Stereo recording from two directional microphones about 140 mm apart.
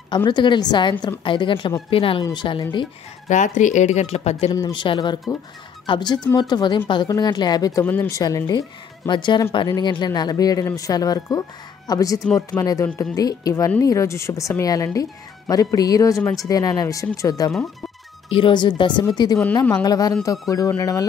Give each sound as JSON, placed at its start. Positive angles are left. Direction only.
{"t": 0.1, "sound": "a woman's voice", "side_deg": 35}
{"t": 3.3, "sound": "speech", "side_deg": 60}
{"t": 4.5, "sound": "a woman's voice", "side_deg": 25}
{"t": 7.8, "sound": "speech", "side_deg": 15}
{"t": 8.2, "sound": "a woman's voice", "side_deg": 25}